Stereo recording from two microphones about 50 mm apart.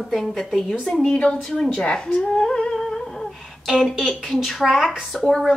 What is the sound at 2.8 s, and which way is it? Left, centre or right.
Humming, centre.